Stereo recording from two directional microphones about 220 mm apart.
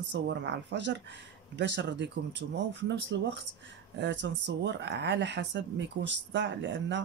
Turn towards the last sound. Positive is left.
turn(degrees=-55)  # may be behind; listen again after turning